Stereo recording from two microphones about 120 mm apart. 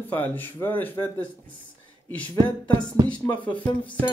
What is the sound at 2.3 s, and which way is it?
Speech, 45° right (ahead or behind).